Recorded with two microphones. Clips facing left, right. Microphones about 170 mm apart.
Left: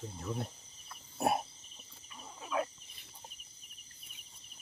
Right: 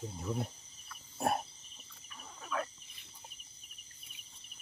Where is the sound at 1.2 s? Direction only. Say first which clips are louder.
Left 2 dB; 10° left (ahead or behind).